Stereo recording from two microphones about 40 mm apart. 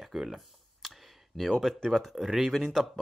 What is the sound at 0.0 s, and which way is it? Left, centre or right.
Speech, centre.